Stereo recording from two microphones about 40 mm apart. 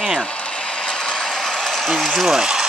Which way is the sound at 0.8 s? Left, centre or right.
Centre.